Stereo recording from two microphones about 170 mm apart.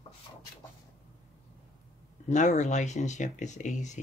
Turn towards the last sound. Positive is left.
turn(degrees=45)  # may be behind; listen again after turning